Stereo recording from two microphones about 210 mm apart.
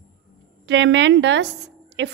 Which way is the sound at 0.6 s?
60° right (ahead or behind).